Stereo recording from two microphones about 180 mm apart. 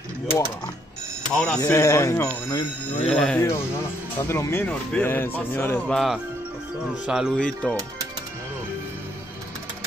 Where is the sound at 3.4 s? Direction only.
15° left (ahead or behind).